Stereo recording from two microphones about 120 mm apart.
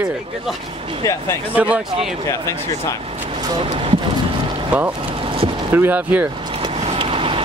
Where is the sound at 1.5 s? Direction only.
10° right (ahead or behind).